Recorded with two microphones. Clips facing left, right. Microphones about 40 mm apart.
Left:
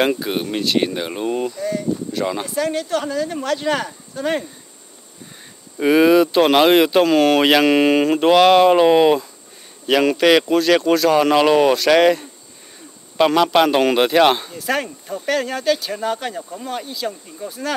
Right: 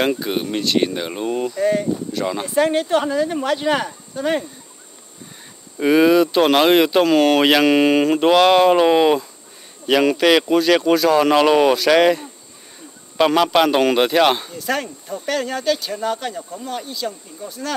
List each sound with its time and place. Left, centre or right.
0.0 s speech: centre
1.6 s speech: right
2.1 s speech: centre
2.5 s speech: right; by 4.5 s centre
5.8 s speech: centre